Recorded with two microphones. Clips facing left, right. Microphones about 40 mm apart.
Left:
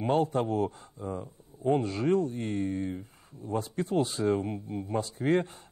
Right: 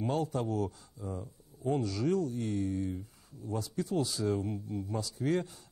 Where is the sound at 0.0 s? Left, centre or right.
Left.